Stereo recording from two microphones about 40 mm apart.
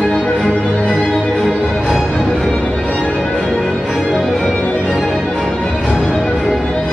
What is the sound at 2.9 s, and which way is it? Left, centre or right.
Music, left.